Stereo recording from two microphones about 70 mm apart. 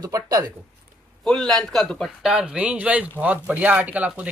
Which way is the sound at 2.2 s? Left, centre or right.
Centre.